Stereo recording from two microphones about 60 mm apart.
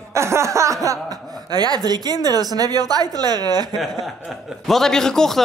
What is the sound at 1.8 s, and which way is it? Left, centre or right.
Speech, right.